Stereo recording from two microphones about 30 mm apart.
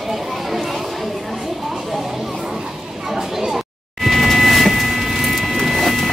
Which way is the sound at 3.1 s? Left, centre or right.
Centre.